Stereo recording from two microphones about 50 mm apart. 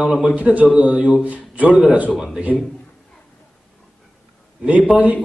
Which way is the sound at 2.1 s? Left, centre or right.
Centre.